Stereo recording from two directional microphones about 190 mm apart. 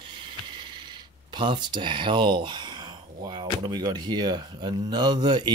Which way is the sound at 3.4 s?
25° right (ahead or behind).